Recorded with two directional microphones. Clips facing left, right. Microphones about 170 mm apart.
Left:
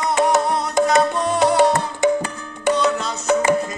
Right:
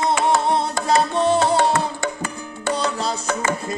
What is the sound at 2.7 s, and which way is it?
Music, 35° right (ahead or behind).